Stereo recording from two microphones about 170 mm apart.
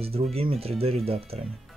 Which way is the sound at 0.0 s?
35° right (ahead or behind).